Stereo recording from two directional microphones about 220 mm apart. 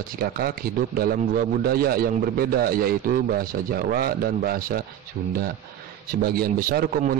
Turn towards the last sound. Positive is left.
turn(degrees=-40)  # may be behind; listen again after turning